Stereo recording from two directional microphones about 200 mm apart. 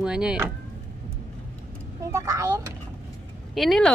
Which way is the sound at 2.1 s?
15° right (ahead or behind).